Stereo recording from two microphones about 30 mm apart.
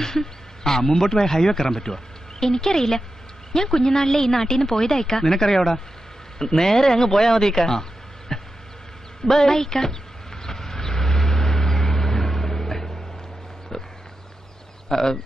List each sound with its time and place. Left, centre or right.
0.0 s a woman's voice: centre
8.3 s insect: centre
9.3 s vehicle: centre
14.9 s speech: centre